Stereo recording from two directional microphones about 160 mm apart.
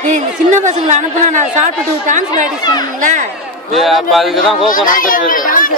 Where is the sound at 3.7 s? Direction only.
Centre (ahead or behind).